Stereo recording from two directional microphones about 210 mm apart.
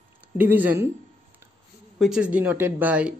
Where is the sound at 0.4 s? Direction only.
10° right (ahead or behind).